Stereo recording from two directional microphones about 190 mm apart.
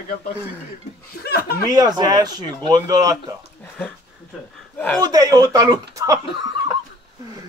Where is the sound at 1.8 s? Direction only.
20° right (ahead or behind).